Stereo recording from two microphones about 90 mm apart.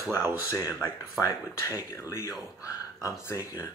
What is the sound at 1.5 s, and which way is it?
Speech, 35° left (ahead or behind).